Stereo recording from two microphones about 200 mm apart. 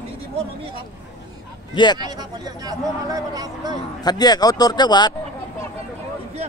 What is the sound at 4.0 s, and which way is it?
Speech, 20° left (ahead or behind).